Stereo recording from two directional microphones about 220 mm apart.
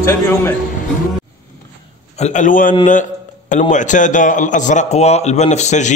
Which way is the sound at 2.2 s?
35° left (ahead or behind).